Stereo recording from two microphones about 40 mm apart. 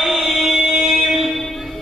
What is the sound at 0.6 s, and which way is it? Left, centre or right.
Music, centre.